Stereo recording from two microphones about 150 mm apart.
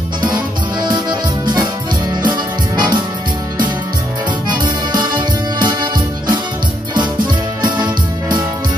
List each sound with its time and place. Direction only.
0.2 s music: 30° right (ahead or behind)
2.2 s music: 30° right (ahead or behind)
5.6 s music: 30° right (ahead or behind)
7.6 s music: 30° right (ahead or behind)